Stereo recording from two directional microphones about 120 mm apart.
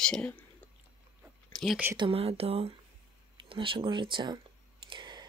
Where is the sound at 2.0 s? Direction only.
50° right (ahead or behind).